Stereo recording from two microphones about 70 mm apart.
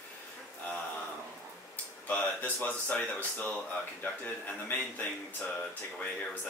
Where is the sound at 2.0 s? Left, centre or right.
Left.